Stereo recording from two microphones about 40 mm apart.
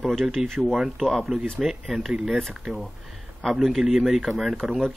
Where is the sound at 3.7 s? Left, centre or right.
Centre.